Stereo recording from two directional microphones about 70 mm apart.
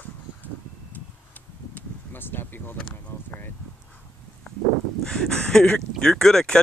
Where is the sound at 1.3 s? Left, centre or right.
Left.